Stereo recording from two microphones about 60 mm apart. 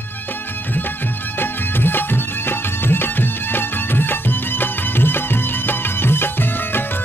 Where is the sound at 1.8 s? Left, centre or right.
Left.